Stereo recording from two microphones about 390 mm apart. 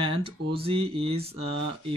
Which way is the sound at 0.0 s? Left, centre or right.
Centre.